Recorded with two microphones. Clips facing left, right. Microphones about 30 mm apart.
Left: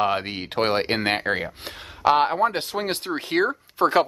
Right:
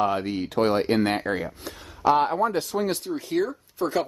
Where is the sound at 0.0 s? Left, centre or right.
Left.